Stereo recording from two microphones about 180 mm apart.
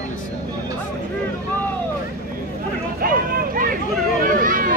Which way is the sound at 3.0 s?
50° right (ahead or behind).